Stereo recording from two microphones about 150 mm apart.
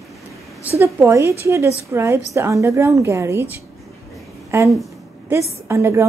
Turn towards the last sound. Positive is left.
turn(degrees=-20)  # may be behind; listen again after turning